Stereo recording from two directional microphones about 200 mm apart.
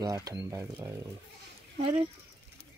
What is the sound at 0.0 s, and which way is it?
Speech, 15° right (ahead or behind).